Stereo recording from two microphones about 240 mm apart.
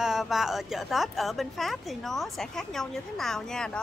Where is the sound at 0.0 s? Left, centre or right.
Centre.